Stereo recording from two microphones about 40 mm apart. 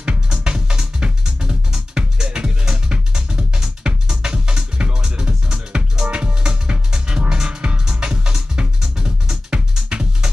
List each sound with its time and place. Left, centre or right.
0.3 s music: right